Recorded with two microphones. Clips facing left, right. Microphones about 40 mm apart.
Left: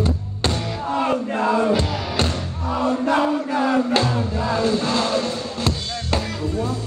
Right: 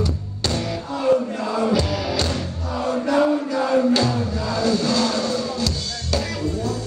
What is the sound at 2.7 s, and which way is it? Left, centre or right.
Chant, left.